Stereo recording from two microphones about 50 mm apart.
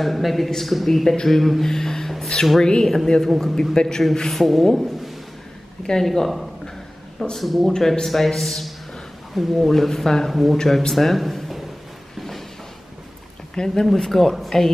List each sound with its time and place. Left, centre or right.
0.0 s a man's voice: centre
3.3 s speech: centre
3.7 s a man's voice: centre
5.9 s speech: centre
12.2 s a sound: centre
13.6 s a man's voice: centre